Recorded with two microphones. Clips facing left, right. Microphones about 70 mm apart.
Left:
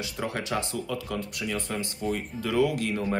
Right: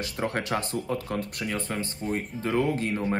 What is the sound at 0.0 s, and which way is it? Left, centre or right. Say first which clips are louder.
Speech: right 2 dB; right.